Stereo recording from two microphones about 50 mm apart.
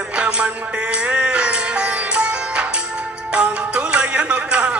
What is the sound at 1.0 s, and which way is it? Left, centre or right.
Music, right.